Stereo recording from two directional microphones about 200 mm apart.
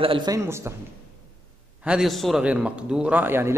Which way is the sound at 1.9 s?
Centre (ahead or behind).